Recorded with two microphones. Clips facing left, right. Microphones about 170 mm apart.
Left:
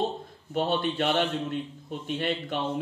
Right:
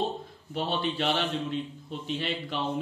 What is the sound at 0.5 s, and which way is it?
A man's voice, 50° left (ahead or behind).